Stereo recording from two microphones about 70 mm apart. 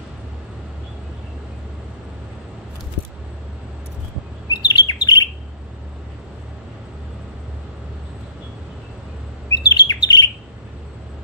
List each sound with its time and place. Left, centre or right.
4.6 s bird: left
9.5 s bird: left